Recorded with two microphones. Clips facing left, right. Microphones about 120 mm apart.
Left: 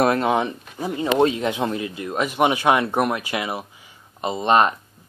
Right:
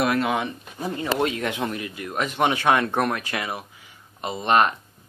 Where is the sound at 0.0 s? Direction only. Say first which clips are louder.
Left 4 dB; 30° left (ahead or behind).